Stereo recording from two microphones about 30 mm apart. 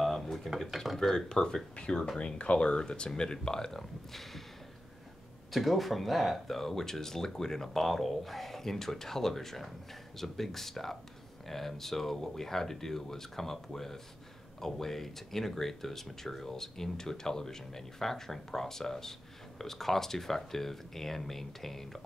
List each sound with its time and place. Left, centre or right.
0.0 s dishes: centre
0.6 s a sound: centre
1.1 s speech: left
2.1 s speech: left; by 3.8 s centre
4.1 s a sound: centre
5.5 s speech: centre